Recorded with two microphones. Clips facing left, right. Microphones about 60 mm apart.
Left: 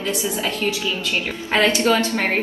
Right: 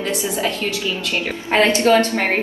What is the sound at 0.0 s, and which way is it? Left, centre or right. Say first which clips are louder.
A woman's voice: right 2 dB; right.